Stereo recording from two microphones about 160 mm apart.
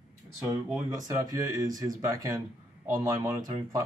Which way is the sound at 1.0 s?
25° right (ahead or behind).